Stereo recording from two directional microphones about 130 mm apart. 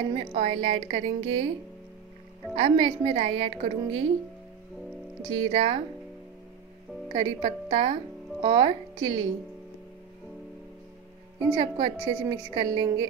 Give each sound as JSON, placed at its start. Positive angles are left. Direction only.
{"t": 0.3, "sound": "speech", "side_deg": -55}
{"t": 2.5, "sound": "speech", "side_deg": -45}
{"t": 5.3, "sound": "speech", "side_deg": -45}
{"t": 7.2, "sound": "speech", "side_deg": -45}
{"t": 11.5, "sound": "a woman's voice", "side_deg": -40}